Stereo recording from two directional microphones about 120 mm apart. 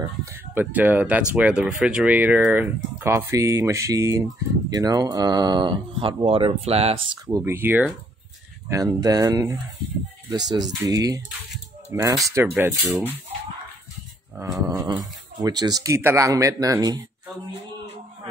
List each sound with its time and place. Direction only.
0.2 s speech: 20° right (ahead or behind); by 7.0 s 60° right (ahead or behind)
7.2 s speech: 25° right (ahead or behind)
8.6 s speech: 30° right (ahead or behind)
14.4 s speech: 25° right (ahead or behind)